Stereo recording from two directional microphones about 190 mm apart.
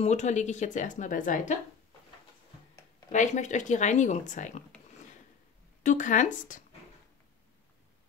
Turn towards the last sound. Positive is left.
turn(degrees=40)  # may be behind; listen again after turning